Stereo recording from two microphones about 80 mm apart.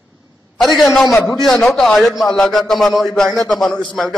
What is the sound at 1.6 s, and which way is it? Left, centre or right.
A man's voice, centre.